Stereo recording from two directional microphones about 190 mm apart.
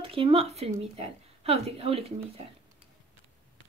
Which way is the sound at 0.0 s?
30° right (ahead or behind).